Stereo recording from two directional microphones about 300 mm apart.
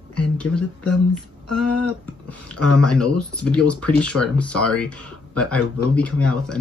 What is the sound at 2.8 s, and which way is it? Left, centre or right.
Speech, centre.